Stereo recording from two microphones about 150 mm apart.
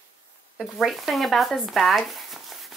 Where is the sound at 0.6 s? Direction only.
Centre (ahead or behind).